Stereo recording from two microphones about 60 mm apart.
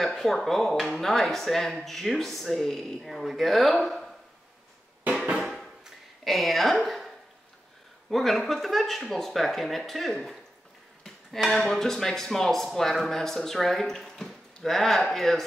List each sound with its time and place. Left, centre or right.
0.0 s speech: centre
5.6 s a sound: centre
8.1 s speech: centre